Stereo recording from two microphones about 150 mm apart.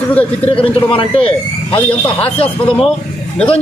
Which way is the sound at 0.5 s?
35° left (ahead or behind).